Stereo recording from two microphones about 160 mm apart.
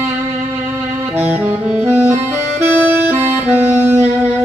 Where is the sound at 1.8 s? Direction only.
15° right (ahead or behind).